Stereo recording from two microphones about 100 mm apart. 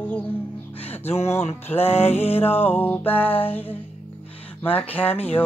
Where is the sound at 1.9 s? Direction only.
90° left.